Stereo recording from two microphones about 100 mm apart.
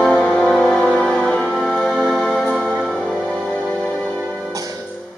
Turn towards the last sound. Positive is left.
turn(degrees=-5)  # may be behind; listen again after turning